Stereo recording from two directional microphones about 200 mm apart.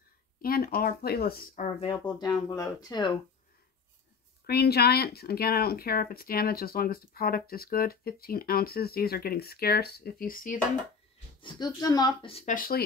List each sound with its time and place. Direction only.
0.4 s speech: 50° left (ahead or behind)
1.5 s speech: 30° left (ahead or behind)
4.5 s speech: 55° left (ahead or behind)
11.4 s speech: 20° left (ahead or behind)
12.5 s speech: 45° left (ahead or behind)